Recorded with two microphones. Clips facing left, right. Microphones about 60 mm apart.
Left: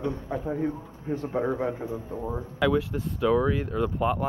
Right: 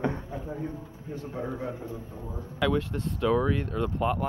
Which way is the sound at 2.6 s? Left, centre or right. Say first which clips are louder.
Left 2 dB; centre.